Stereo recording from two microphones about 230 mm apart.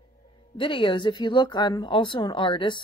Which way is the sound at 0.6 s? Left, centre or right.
Left.